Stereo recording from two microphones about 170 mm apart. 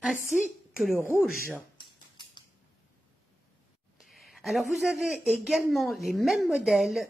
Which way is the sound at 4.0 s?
Centre (ahead or behind).